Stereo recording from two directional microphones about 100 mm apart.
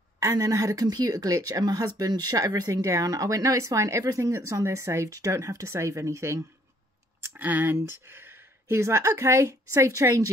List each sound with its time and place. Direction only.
0.2 s speech: 35° right (ahead or behind)
7.2 s speech: 20° right (ahead or behind); by 10.3 s 35° right (ahead or behind)